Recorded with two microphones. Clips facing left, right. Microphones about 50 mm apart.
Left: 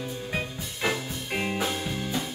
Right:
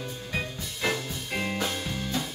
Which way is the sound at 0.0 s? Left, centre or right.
Centre.